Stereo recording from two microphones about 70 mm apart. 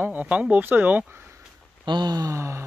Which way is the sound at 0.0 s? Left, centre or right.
Right.